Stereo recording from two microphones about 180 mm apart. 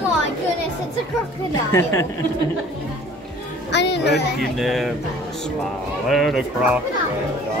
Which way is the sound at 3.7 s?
70° left (ahead or behind).